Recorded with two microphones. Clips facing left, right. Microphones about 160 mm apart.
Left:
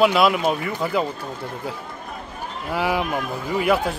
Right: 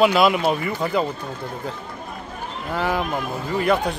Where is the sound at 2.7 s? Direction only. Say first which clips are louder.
Left 1 dB; 10° left (ahead or behind).